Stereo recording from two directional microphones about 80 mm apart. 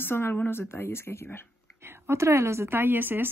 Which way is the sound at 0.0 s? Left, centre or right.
Left.